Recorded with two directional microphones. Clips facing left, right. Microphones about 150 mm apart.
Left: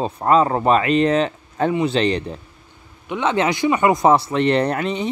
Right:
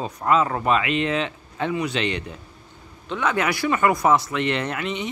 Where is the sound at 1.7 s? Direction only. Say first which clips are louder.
Left 6 dB; 30° left (ahead or behind).